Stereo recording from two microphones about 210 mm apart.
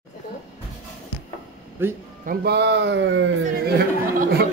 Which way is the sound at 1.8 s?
10° right (ahead or behind).